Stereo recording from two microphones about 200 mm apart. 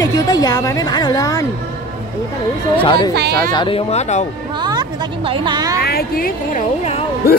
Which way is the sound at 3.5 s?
25° left (ahead or behind).